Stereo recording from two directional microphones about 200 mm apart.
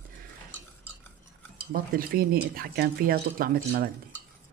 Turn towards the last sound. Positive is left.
turn(degrees=-50)  # may be behind; listen again after turning